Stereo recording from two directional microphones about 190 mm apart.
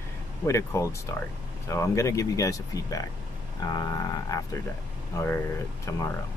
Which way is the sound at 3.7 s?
20° left (ahead or behind).